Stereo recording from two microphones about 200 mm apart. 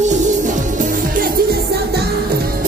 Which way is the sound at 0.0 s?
35° right (ahead or behind).